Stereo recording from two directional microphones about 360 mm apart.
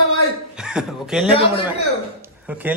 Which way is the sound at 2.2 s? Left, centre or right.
Centre.